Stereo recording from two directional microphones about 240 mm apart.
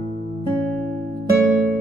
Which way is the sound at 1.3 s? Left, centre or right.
Right.